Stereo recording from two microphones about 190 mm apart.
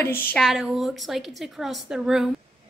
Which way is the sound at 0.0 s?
10° left (ahead or behind).